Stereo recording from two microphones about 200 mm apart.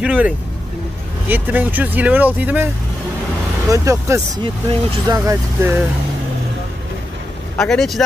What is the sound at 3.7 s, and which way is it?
Speech, 15° right (ahead or behind).